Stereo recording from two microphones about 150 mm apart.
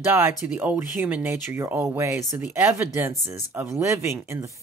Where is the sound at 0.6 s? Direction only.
15° right (ahead or behind).